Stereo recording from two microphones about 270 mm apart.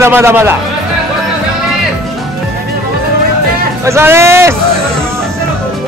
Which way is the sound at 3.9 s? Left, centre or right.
Centre.